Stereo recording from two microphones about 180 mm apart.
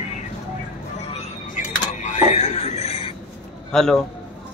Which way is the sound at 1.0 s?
35° left (ahead or behind).